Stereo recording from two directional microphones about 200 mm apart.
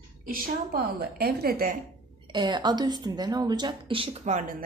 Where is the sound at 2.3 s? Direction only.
20° right (ahead or behind).